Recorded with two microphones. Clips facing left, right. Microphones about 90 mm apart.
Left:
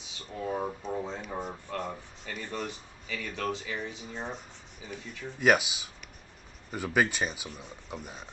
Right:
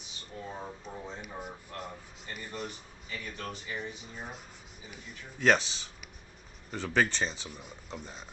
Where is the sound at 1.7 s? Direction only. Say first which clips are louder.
Left 6 dB; 90° left.